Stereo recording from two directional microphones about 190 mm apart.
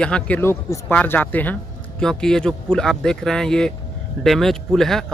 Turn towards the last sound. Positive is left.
turn(degrees=0)  # may be behind; listen again after turning